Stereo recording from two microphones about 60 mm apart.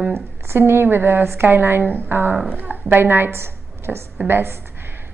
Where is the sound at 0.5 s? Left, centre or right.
Right.